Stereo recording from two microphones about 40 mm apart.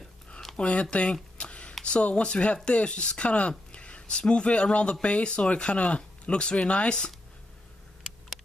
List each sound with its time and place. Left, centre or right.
0.7 s speech: left
1.4 s a sound: left
2.0 s speech: left